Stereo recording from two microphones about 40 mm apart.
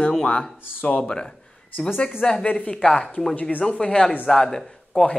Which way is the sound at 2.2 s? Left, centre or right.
Centre.